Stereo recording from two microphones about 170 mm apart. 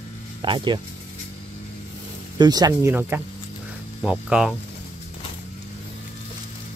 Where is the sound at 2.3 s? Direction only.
25° right (ahead or behind).